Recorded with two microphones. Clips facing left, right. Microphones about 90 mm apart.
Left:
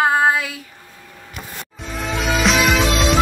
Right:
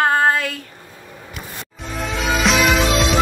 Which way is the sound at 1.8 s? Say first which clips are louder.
Even; centre (ahead or behind).